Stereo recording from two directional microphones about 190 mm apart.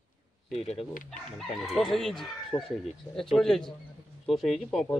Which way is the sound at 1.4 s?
Centre (ahead or behind).